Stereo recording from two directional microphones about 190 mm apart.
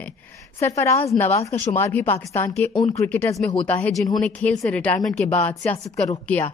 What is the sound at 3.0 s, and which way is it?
A woman's voice, 10° left (ahead or behind).